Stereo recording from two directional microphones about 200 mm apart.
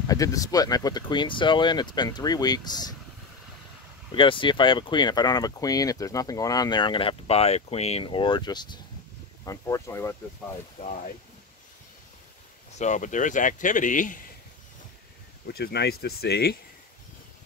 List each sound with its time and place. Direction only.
0.0 s speech: 15° left (ahead or behind)
4.1 s speech: 25° left (ahead or behind)
10.8 s speech: 40° left (ahead or behind)
12.7 s speech: 35° left (ahead or behind)
15.4 s speech: 50° left (ahead or behind)